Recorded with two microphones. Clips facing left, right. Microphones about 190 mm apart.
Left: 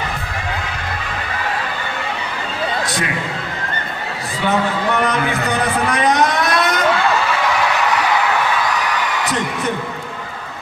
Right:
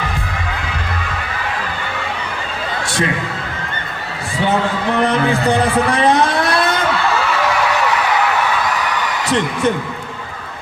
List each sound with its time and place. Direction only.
5.0 s a man's voice: 30° right (ahead or behind)